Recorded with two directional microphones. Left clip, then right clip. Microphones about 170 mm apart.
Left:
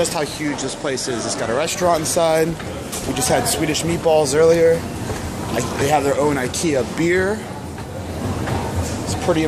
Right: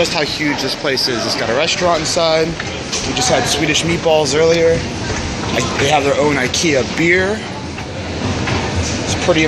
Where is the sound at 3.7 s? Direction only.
10° left (ahead or behind).